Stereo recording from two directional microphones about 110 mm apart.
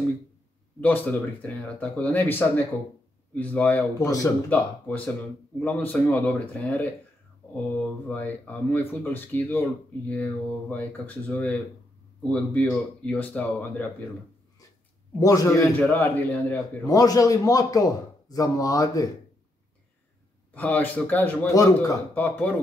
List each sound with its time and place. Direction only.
0.7 s speech: 15° left (ahead or behind)
4.0 s a man's voice: 30° left (ahead or behind)
4.5 s speech: 15° left (ahead or behind)
15.1 s a man's voice: 30° left (ahead or behind)
16.0 s speech: 15° left (ahead or behind)
16.8 s a man's voice: 35° left (ahead or behind)
20.5 s speech: 15° left (ahead or behind)
21.5 s a man's voice: 35° left (ahead or behind)
22.1 s speech: 15° left (ahead or behind)